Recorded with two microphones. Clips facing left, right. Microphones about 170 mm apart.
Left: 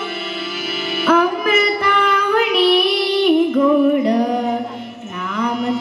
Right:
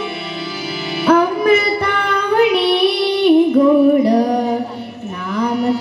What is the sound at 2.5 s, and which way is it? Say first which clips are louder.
Child singing: even; 25° right (ahead or behind).